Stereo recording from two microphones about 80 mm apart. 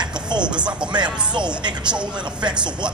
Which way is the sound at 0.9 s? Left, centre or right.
Right.